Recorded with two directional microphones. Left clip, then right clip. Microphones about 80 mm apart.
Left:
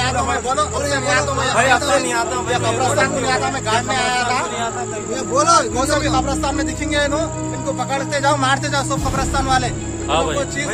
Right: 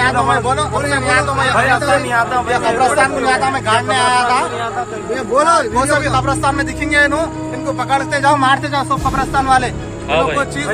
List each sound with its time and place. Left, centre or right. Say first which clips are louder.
0.0 s speech: right 6 dB; left
5.3 s speech: right 2 dB; centre
5.8 s speech: right 4 dB; left
9.3 s speech: right 5 dB; left